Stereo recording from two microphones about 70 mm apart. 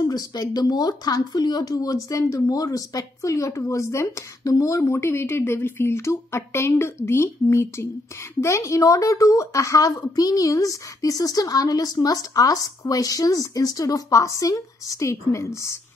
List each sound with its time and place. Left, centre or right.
0.0 s speech: left
2.0 s a woman's voice: left